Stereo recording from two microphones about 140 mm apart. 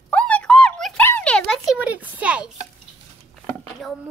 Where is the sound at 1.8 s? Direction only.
10° right (ahead or behind).